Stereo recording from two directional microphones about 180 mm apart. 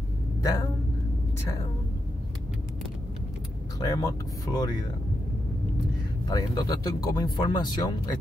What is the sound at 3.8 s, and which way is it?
Speech, 20° left (ahead or behind).